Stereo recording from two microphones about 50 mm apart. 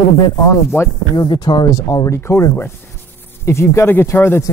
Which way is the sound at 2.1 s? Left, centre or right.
Left.